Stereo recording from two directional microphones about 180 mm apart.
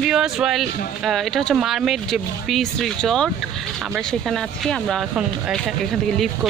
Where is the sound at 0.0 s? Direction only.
5° right (ahead or behind).